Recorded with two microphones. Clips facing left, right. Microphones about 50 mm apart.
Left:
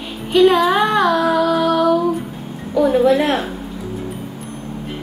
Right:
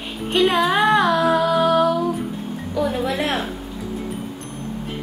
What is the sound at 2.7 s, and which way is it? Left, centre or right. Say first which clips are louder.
Speech: left 9 dB; centre.